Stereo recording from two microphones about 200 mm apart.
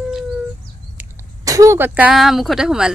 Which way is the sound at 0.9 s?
15° right (ahead or behind).